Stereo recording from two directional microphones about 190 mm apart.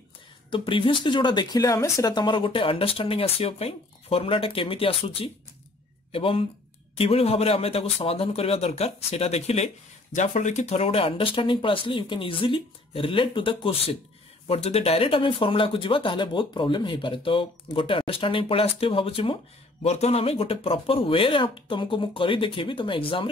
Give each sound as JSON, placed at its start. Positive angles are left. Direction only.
{"t": 0.5, "sound": "speech", "side_deg": 25}